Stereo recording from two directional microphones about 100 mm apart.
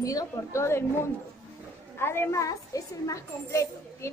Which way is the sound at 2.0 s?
25° left (ahead or behind).